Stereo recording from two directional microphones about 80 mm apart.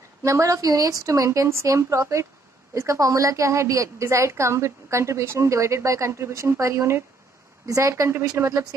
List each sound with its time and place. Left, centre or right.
0.2 s a woman's voice: right